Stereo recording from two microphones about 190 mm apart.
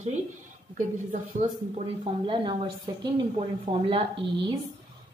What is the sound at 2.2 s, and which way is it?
A woman's voice, 25° right (ahead or behind).